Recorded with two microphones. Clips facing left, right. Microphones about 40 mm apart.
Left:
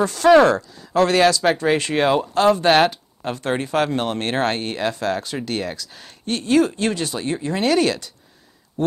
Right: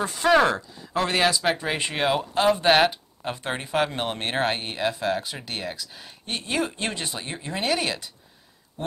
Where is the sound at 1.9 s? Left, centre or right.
Centre.